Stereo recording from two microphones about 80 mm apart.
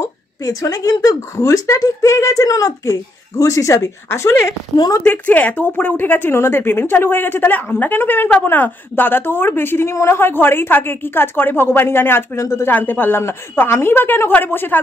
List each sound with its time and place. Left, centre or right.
0.0 s speech: left
5.0 s a woman's voice: centre